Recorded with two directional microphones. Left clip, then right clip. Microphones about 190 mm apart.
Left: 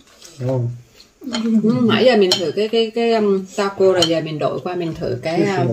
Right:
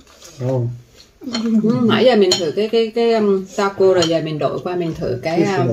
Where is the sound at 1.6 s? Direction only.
25° left (ahead or behind).